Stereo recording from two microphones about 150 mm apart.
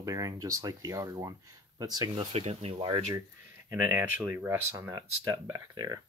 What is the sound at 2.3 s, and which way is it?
Speech, 45° right (ahead or behind).